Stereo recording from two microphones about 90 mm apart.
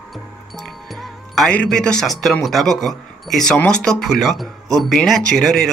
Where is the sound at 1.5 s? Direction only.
10° left (ahead or behind).